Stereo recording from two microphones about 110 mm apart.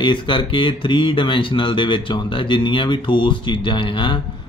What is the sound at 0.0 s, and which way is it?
Speech, 45° left (ahead or behind).